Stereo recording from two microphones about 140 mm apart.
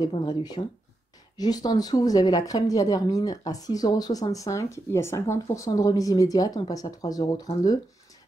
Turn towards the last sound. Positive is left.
turn(degrees=25)  # may be behind; listen again after turning